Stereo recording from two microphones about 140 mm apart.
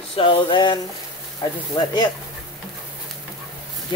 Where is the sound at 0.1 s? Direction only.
40° left (ahead or behind).